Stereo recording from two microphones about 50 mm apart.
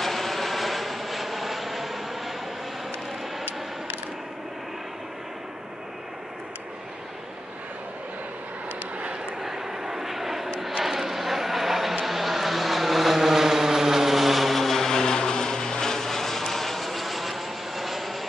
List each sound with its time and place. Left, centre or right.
0.0 s vehicle: centre
8.9 s vehicle: right
9.4 s vehicle: centre